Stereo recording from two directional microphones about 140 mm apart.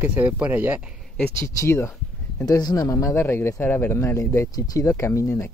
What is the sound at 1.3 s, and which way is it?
Speech, 20° left (ahead or behind).